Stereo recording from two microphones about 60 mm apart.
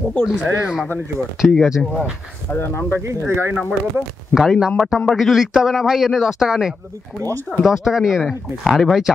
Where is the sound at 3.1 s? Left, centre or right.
Right.